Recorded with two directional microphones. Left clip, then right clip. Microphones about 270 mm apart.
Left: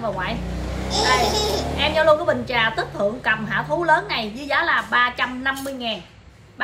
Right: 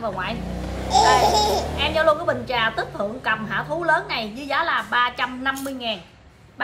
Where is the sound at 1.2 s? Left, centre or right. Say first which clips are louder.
Right 3 dB; right.